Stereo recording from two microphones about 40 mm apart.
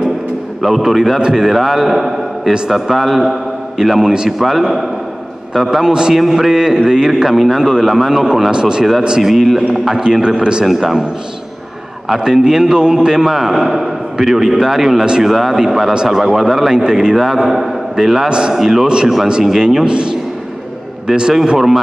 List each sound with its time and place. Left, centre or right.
0.6 s a man's voice: centre
1.5 s a man's voice: centre
6.1 s a man's voice: centre
7.2 s a man's voice: centre
8.5 s speech: right
9.2 s a man's voice: centre
10.6 s a man's voice: centre
12.1 s a man's voice: centre
16.7 s a man's voice: centre